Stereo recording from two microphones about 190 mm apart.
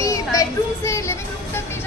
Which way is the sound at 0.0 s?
15° left (ahead or behind).